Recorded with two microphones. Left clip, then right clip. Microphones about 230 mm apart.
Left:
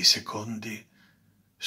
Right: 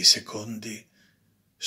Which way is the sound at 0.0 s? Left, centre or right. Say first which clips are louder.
Right 2 dB; centre.